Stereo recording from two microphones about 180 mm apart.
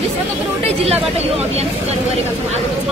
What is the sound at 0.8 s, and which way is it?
Speech, 35° right (ahead or behind).